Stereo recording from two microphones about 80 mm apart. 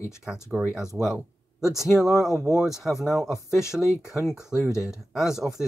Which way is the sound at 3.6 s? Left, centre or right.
Left.